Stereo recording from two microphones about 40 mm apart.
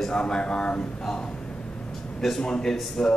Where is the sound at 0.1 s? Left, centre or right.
Left.